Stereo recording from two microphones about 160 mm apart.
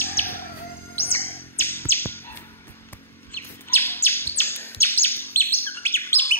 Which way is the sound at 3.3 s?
15° left (ahead or behind).